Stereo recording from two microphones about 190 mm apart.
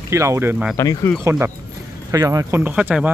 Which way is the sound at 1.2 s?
15° right (ahead or behind).